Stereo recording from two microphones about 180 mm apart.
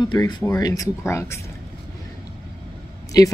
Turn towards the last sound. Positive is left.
turn(degrees=20)  # may be behind; listen again after turning